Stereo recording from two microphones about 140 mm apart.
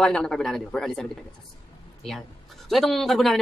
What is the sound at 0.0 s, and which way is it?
A man's voice, 5° left (ahead or behind).